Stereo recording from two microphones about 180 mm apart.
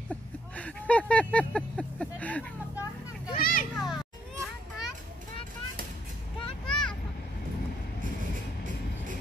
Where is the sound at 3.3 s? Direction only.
55° left (ahead or behind).